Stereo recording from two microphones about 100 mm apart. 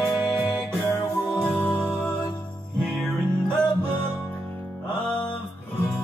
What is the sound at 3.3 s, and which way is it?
Music, 20° right (ahead or behind).